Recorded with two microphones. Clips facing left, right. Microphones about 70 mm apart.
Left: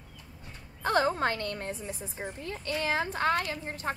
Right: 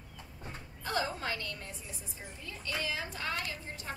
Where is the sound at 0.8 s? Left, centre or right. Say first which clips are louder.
Left 8 dB; left.